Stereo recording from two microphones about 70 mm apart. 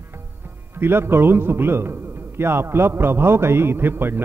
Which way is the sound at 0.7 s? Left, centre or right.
Right.